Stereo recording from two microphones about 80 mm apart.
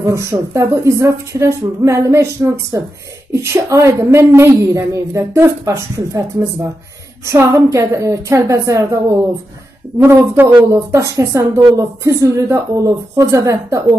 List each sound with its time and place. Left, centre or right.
0.0 s a woman's voice: right
10.0 s a woman's voice: right